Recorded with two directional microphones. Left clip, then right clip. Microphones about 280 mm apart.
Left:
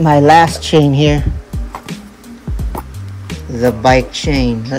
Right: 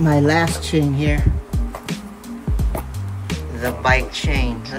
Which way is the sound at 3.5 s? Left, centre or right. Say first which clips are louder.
Left 8 dB; centre.